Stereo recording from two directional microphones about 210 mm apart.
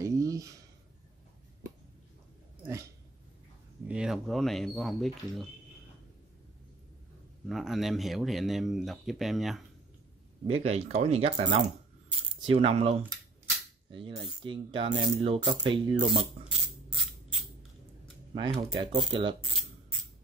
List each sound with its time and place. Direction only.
0.0 s a sound: 15° right (ahead or behind)
3.8 s speech: 5° right (ahead or behind)
7.4 s speech: centre (ahead or behind)
10.4 s speech: 30° right (ahead or behind)
12.4 s rub: 25° right (ahead or behind)
16.9 s a sound: centre (ahead or behind)
18.3 s speech: 20° right (ahead or behind)
18.8 s rub: 20° right (ahead or behind)